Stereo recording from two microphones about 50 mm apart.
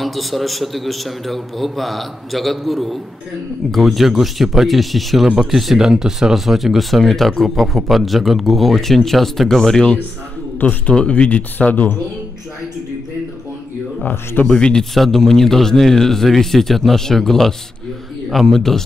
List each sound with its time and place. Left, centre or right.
0.0 s speech: centre
5.3 s speech: centre
10.9 s speech: left
11.5 s speech: left
14.4 s speech: centre